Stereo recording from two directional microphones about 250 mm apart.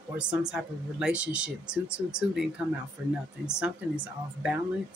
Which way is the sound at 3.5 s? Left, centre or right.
Centre.